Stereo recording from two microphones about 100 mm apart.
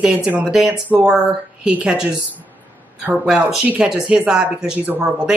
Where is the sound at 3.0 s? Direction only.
10° right (ahead or behind).